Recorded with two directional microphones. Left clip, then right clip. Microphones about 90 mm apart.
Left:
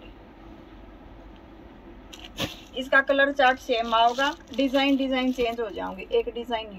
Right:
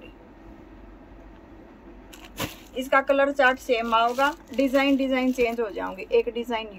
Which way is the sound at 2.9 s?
40° right (ahead or behind).